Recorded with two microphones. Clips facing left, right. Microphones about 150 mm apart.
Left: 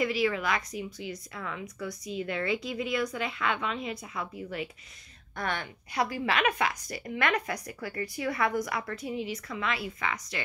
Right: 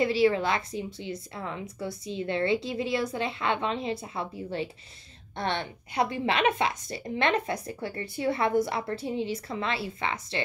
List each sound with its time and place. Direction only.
0.0 s a woman's voice: 30° right (ahead or behind)